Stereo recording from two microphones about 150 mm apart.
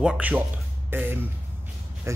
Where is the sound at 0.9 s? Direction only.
15° right (ahead or behind).